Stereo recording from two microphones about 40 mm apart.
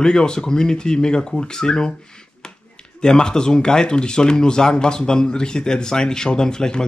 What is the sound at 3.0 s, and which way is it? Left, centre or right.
Speech, centre.